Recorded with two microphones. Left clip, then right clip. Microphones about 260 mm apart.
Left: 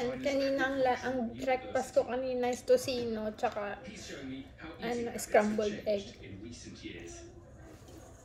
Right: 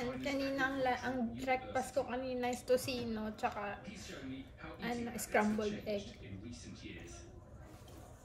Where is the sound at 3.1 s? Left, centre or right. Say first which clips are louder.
Left 5 dB; centre.